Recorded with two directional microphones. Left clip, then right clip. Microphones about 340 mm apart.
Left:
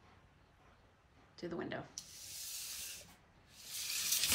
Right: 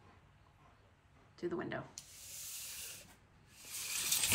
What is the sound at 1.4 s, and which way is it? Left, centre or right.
Speech, centre.